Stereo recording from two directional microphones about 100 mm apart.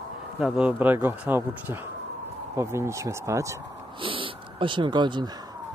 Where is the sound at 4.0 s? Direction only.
60° right (ahead or behind).